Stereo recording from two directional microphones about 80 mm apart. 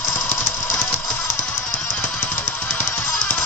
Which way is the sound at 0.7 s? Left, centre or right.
Centre.